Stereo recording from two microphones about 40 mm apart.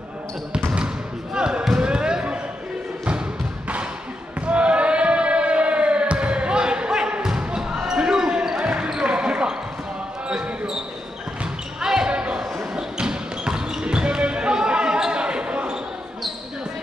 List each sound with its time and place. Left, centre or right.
0.7 s basketball bounce: right
4.5 s crowd: right
10.2 s basketball bounce: right
11.8 s basketball bounce: centre